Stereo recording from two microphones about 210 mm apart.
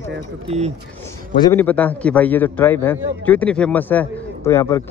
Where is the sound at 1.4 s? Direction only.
20° left (ahead or behind).